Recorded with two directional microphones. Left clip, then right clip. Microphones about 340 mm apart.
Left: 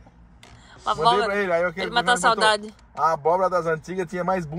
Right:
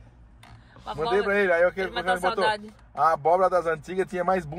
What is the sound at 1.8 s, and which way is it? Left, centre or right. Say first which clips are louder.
Speech: left 6 dB; left.